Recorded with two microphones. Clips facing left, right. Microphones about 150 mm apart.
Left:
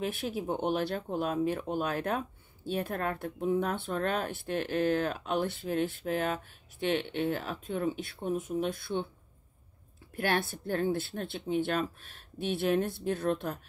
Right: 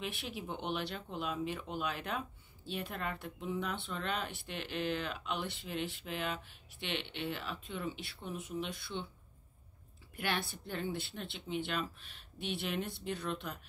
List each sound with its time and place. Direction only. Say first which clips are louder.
0.0 s speech: left 8 dB; 45° left (ahead or behind)
10.1 s speech: left 7 dB; 45° left (ahead or behind)